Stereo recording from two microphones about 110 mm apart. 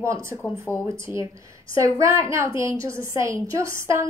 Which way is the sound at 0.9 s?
25° right (ahead or behind).